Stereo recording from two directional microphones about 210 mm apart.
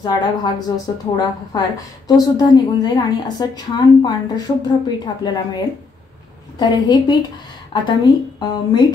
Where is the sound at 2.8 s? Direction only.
20° left (ahead or behind).